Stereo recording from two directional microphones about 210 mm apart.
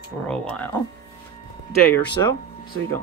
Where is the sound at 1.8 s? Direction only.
50° left (ahead or behind).